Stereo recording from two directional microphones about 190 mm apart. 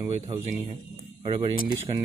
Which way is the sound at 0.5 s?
20° right (ahead or behind).